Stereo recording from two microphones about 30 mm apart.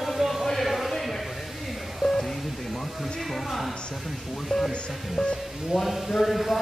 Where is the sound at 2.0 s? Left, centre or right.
Centre.